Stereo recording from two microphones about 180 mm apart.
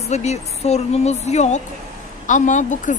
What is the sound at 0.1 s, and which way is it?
A woman's voice, 40° left (ahead or behind).